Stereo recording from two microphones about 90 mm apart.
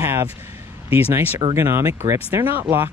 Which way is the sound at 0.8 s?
20° right (ahead or behind).